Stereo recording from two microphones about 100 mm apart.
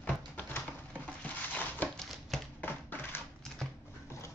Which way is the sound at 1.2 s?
15° left (ahead or behind).